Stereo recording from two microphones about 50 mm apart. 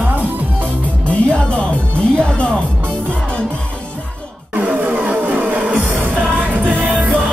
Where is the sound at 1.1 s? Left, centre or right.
Left.